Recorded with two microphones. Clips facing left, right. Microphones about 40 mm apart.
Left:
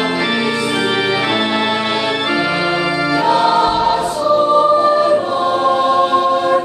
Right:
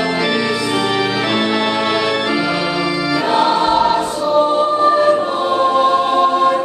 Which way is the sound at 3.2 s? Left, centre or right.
Centre.